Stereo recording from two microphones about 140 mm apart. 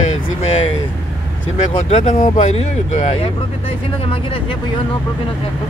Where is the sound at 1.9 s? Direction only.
50° left (ahead or behind).